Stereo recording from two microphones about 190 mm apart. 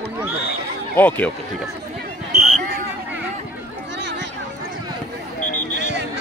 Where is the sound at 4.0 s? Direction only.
70° right (ahead or behind).